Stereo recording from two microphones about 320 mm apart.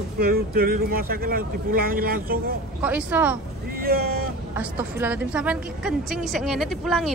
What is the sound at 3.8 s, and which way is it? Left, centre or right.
Speech, right.